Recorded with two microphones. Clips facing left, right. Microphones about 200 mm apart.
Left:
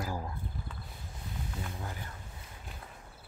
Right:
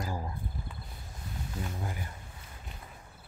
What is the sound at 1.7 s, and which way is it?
Speech, 15° right (ahead or behind).